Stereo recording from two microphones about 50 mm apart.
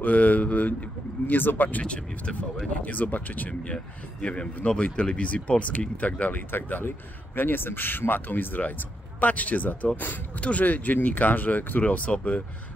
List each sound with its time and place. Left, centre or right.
0.0 s speech: left
2.3 s speech: centre
2.8 s speech: left
3.6 s speech: left